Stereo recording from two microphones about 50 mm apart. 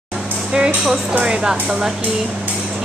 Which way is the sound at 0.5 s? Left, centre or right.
Centre.